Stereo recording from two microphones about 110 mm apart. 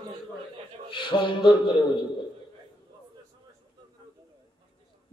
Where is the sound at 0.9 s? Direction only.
45° left (ahead or behind).